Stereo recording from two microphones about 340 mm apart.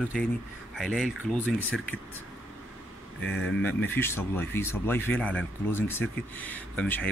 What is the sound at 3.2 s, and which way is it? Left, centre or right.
Speech, left.